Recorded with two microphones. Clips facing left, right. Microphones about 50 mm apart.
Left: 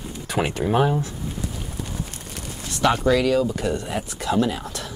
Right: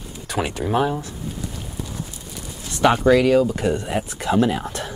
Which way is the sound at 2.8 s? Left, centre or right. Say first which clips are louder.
Right 4 dB; centre.